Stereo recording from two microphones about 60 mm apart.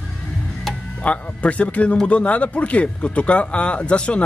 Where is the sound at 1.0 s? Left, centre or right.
Left.